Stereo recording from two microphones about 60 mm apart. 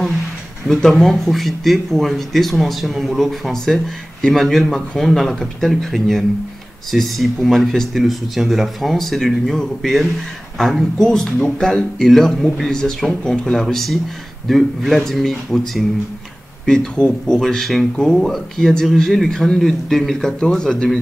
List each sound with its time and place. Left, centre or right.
0.7 s a man's voice: centre